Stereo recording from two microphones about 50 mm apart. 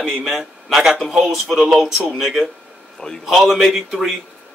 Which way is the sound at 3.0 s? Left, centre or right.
Centre.